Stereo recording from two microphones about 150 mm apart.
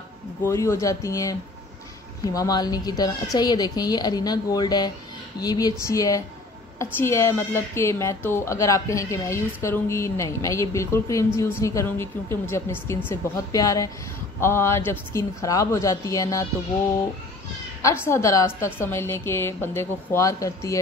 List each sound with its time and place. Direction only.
0.4 s a woman's voice: 20° left (ahead or behind)
17.8 s a woman's voice: 15° left (ahead or behind)